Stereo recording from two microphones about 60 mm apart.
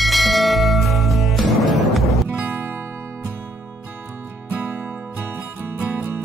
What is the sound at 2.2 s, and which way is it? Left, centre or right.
Music, right.